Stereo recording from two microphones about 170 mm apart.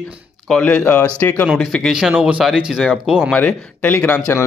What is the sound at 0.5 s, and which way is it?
Speech, 5° left (ahead or behind).